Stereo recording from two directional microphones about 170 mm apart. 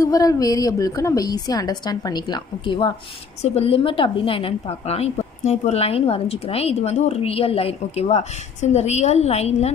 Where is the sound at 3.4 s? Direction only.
35° left (ahead or behind).